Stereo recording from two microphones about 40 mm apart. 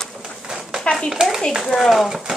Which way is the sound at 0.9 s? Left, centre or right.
Left.